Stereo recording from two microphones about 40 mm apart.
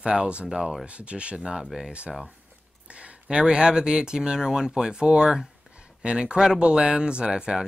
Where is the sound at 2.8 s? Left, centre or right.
Right.